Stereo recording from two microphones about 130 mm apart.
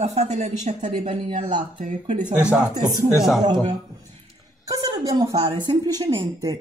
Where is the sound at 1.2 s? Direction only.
40° right (ahead or behind).